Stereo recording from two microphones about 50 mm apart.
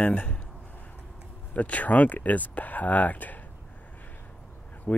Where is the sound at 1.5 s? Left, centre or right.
Left.